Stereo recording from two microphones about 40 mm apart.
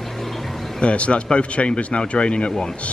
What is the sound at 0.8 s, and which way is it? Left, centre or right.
Speech, left.